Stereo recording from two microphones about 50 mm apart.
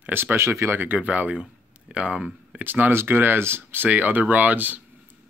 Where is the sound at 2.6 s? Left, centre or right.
Right.